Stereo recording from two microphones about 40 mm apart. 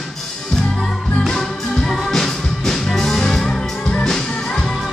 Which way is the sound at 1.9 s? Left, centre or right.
Centre.